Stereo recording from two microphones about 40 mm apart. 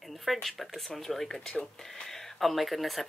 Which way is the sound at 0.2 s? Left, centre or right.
Centre.